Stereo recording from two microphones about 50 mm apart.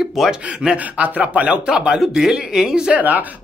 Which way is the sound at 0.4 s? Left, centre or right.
Right.